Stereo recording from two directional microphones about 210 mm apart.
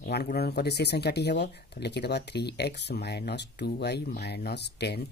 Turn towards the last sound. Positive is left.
turn(degrees=50)  # may be behind; listen again after turning